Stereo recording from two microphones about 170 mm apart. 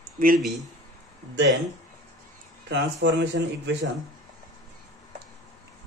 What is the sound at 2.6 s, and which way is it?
Speech, 90° right.